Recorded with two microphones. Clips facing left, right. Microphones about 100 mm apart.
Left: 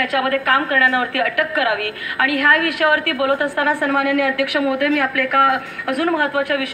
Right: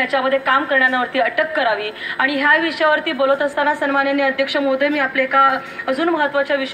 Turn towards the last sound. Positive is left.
turn(degrees=-25)  # may be behind; listen again after turning